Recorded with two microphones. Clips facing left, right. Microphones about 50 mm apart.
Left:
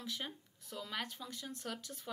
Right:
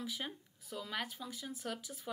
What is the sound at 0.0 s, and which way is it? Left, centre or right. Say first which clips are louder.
Speech: right 2 dB; centre.